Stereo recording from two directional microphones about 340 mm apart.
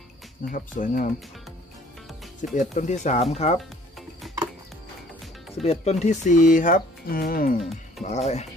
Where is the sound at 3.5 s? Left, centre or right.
Centre.